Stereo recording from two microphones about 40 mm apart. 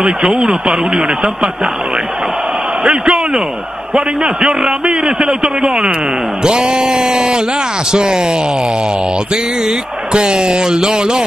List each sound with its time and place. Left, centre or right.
0.0 s a man's voice: centre
2.8 s a man's voice: centre